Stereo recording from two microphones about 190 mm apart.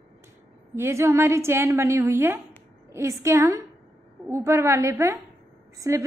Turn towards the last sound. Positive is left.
turn(degrees=-15)  # may be behind; listen again after turning